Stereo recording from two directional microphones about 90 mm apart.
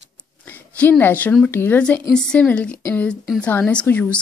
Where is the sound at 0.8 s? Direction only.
20° left (ahead or behind).